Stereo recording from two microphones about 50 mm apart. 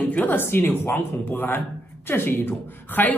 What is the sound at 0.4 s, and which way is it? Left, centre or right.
A man's voice, left.